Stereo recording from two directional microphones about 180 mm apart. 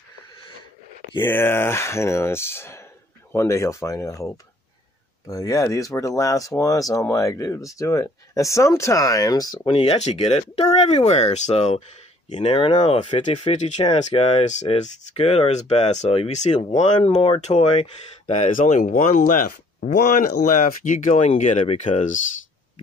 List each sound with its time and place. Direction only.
1.2 s speech: 10° left (ahead or behind)
9.8 s speech: 40° left (ahead or behind)